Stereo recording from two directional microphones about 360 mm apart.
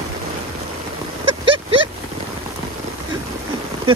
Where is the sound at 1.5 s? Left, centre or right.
Right.